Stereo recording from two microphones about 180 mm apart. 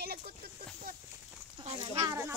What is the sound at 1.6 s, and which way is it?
Speech, 25° right (ahead or behind).